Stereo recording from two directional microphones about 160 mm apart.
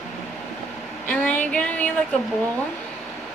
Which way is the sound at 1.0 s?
10° left (ahead or behind).